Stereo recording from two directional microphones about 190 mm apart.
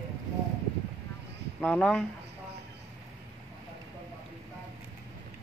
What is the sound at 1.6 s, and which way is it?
Speech, centre (ahead or behind).